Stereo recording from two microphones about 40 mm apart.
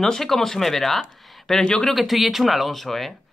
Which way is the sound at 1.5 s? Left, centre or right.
Centre.